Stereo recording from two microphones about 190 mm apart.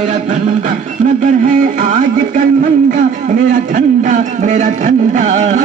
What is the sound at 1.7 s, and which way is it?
Speech, 40° right (ahead or behind).